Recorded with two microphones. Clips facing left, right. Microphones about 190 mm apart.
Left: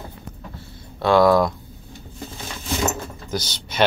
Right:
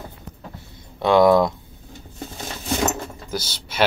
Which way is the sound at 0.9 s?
20° right (ahead or behind).